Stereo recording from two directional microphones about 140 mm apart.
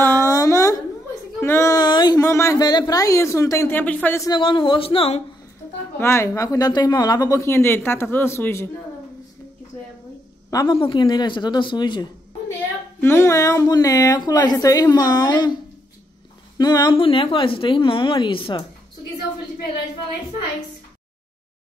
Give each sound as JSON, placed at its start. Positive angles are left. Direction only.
{"t": 0.0, "sound": "a sound", "side_deg": 20}
{"t": 1.4, "sound": "speech", "side_deg": 20}
{"t": 4.3, "sound": "a woman's voice", "side_deg": 35}
{"t": 5.9, "sound": "speech", "side_deg": 20}
{"t": 10.5, "sound": "a woman's voice", "side_deg": 25}
{"t": 13.0, "sound": "speech", "side_deg": 20}
{"t": 16.9, "sound": "a woman's voice", "side_deg": 40}